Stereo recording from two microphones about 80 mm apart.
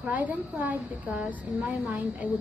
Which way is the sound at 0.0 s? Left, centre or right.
Right.